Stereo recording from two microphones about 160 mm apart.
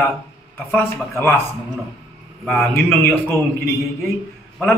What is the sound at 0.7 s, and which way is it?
Speech, 10° left (ahead or behind).